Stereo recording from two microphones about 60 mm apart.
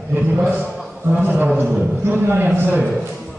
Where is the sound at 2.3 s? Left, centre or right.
Right.